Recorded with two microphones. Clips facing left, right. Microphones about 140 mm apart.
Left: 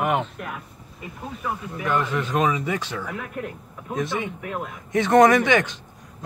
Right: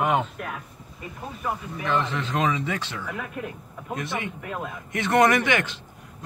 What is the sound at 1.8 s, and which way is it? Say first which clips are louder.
Speech: left 2 dB; 10° left (ahead or behind).